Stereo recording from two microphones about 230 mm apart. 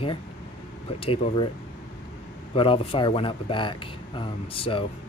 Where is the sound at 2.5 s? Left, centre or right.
Left.